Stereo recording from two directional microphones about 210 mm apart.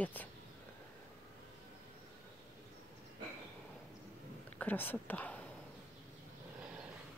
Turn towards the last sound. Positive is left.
turn(degrees=10)  # may be behind; listen again after turning